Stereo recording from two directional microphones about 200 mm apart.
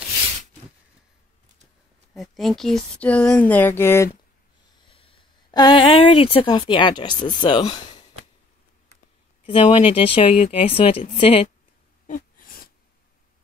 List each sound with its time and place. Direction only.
2.1 s speech: centre (ahead or behind)
4.7 s speech: 25° left (ahead or behind)
9.5 s speech: 25° left (ahead or behind)
12.1 s a sound: 45° left (ahead or behind)